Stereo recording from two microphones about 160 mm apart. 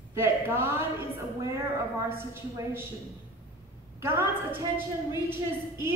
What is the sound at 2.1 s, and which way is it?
Speech, 15° right (ahead or behind).